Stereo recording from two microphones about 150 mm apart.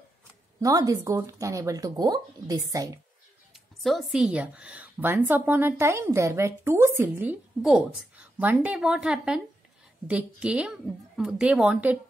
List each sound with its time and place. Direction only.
0.6 s speech: 25° right (ahead or behind)
3.5 s a woman's voice: centre (ahead or behind)